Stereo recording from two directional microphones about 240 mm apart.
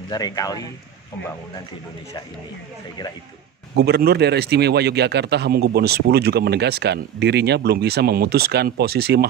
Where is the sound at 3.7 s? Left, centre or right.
Right.